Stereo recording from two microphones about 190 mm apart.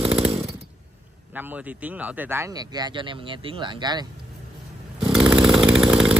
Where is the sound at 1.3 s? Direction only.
10° right (ahead or behind).